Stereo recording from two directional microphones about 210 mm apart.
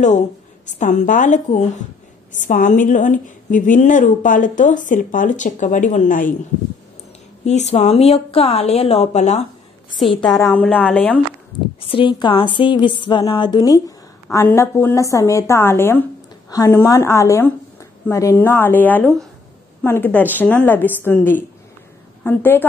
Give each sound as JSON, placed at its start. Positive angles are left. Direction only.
{"t": 0.7, "sound": "a woman's voice", "side_deg": 35}
{"t": 7.4, "sound": "a woman's voice", "side_deg": 30}
{"t": 9.9, "sound": "a woman's voice", "side_deg": 0}
{"t": 10.3, "sound": "speech", "side_deg": 10}
{"t": 11.5, "sound": "a woman's voice", "side_deg": 20}